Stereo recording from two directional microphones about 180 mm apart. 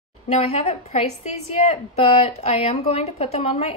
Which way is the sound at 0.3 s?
35° left (ahead or behind).